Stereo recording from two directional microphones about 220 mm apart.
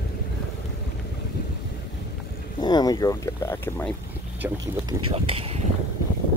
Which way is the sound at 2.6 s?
15° left (ahead or behind).